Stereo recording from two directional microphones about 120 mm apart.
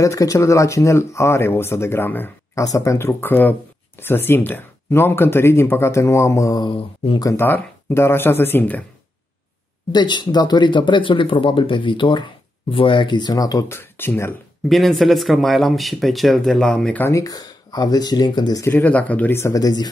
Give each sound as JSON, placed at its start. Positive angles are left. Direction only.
{"t": 0.0, "sound": "speech", "side_deg": 30}
{"t": 2.6, "sound": "speech", "side_deg": 30}
{"t": 9.9, "sound": "speech", "side_deg": 40}
{"t": 14.7, "sound": "speech", "side_deg": 0}
{"t": 17.0, "sound": "speech", "side_deg": 30}
{"t": 18.7, "sound": "speech", "side_deg": 15}